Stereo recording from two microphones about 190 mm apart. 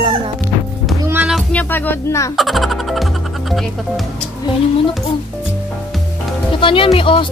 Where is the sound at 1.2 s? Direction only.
5° left (ahead or behind).